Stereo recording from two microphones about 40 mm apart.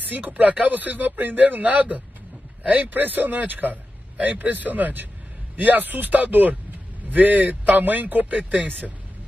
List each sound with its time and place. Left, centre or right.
0.1 s speech: right